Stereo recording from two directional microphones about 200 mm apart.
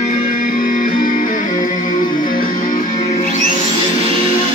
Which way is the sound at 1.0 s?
45° left (ahead or behind).